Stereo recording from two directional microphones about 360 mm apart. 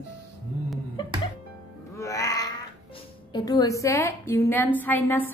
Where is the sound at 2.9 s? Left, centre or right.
Centre.